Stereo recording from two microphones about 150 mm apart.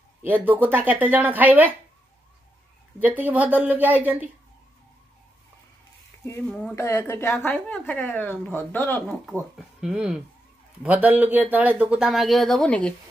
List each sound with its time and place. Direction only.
0.2 s speech: 10° right (ahead or behind)
3.0 s speech: 10° right (ahead or behind)
6.4 s speech: 5° left (ahead or behind)
9.3 s speech: 5° right (ahead or behind)